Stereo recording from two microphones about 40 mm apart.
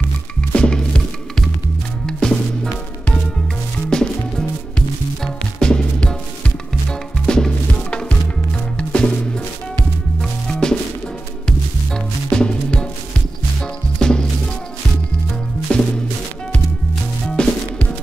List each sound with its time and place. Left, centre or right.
0.4 s music: left
3.9 s music: centre
10.5 s music: centre
15.7 s music: left
17.4 s music: left